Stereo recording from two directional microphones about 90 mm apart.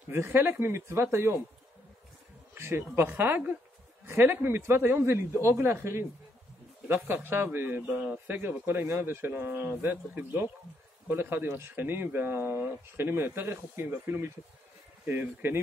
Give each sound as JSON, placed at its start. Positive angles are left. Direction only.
{"t": 0.1, "sound": "a man's voice", "side_deg": -25}
{"t": 2.5, "sound": "a man's voice", "side_deg": -25}